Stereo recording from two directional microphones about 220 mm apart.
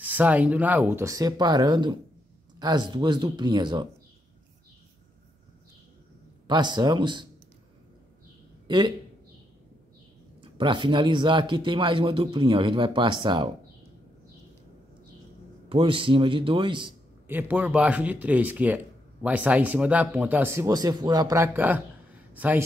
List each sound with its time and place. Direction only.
0.0 s speech: 5° right (ahead or behind)
6.4 s speech: 20° right (ahead or behind)
8.6 s a man's voice: 20° right (ahead or behind)
10.4 s speech: 20° right (ahead or behind)
15.7 s speech: 25° right (ahead or behind)
17.3 s speech: 10° right (ahead or behind)